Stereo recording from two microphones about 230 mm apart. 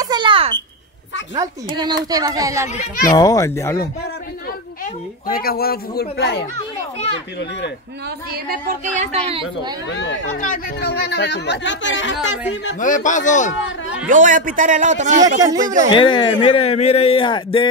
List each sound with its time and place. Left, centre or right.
0.0 s smoke detector: centre
1.8 s speech: centre
2.7 s speech: left
3.2 s speech: centre
5.2 s speech: left
8.3 s a man's voice: right
9.3 s speech: centre
9.8 s speech: left
10.4 s speech: left
12.8 s speech: left
14.0 s a man's voice: right
15.9 s speech: left